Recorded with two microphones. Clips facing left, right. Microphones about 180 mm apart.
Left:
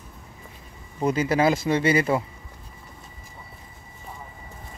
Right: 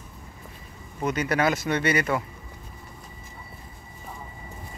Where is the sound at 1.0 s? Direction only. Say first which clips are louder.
Left 3 dB; 25° left (ahead or behind).